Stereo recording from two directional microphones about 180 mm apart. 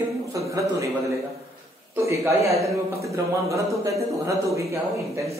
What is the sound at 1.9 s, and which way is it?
A man's voice, 15° right (ahead or behind).